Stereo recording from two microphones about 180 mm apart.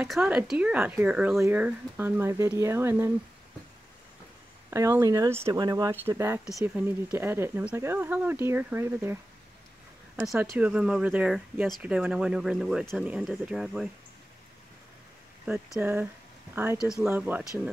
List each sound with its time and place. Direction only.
0.0 s speech: 5° right (ahead or behind)
4.6 s speech: 15° right (ahead or behind)
10.1 s speech: centre (ahead or behind)
15.4 s speech: 5° right (ahead or behind)